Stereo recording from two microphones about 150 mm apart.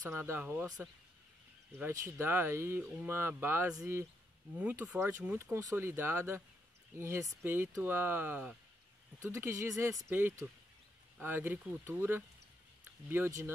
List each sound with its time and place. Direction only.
0.0 s speech: 15° right (ahead or behind)
1.8 s speech: 15° right (ahead or behind)